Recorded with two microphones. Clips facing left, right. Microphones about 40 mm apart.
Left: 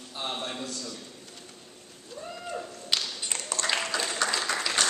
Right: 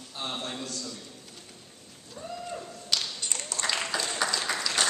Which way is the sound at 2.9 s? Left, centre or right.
Centre.